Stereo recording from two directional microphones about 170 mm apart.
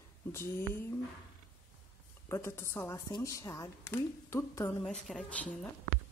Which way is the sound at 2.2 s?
15° left (ahead or behind).